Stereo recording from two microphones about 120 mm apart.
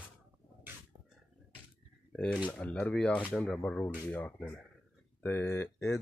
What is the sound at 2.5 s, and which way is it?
Speech, 10° left (ahead or behind).